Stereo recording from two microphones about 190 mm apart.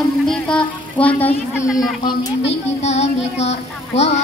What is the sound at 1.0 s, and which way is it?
Child singing, 30° left (ahead or behind).